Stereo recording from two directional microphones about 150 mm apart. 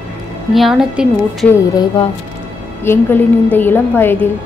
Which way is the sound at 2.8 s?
15° left (ahead or behind).